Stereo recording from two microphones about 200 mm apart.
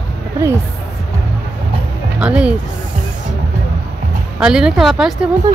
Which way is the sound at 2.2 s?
5° right (ahead or behind).